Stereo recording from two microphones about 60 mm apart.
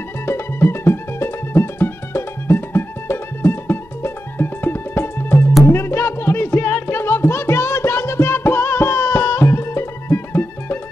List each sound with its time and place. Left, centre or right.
0.3 s music: left